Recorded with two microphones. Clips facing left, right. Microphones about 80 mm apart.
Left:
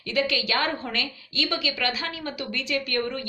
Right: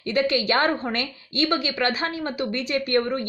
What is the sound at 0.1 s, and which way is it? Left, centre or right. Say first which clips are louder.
Speech: right 4 dB; right.